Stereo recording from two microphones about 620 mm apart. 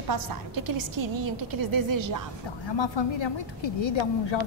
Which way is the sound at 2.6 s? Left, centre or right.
Left.